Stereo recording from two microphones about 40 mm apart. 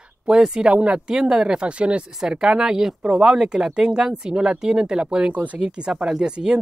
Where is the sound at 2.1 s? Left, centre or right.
Centre.